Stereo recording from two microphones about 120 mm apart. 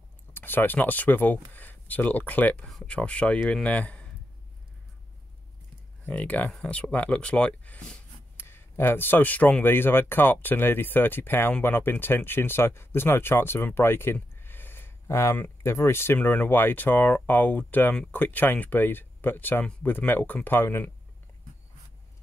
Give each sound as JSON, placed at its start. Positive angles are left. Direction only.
{"t": 0.3, "sound": "speech", "side_deg": 15}
{"t": 6.0, "sound": "speech", "side_deg": 10}